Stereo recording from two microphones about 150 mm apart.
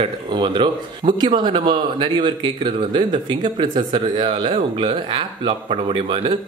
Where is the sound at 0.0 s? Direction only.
30° right (ahead or behind).